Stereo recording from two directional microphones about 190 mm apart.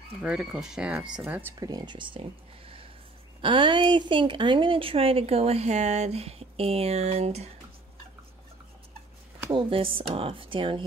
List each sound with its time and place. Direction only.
0.2 s a woman's voice: 5° right (ahead or behind); by 7.4 s 35° right (ahead or behind)
9.5 s speech: 25° right (ahead or behind)